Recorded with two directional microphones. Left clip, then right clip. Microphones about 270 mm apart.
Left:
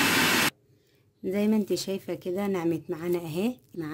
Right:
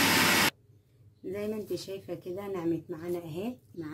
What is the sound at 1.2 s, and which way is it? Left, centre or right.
Speech, left.